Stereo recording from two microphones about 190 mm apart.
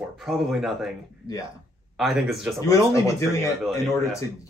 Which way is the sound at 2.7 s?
15° left (ahead or behind).